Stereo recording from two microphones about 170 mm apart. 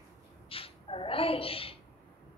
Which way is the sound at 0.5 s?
35° left (ahead or behind).